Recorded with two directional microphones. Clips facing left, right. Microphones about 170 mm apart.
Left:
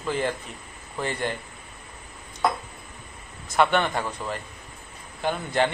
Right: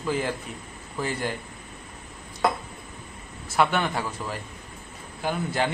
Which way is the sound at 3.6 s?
5° right (ahead or behind).